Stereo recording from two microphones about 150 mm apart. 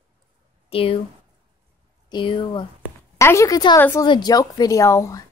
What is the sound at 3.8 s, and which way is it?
Speech, 15° left (ahead or behind).